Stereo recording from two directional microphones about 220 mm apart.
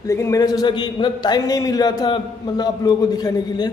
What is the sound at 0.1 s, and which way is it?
A man's voice, 15° left (ahead or behind).